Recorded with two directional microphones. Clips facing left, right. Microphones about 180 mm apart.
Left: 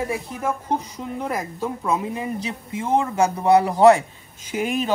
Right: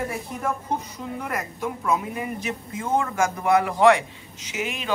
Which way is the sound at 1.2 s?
30° left (ahead or behind).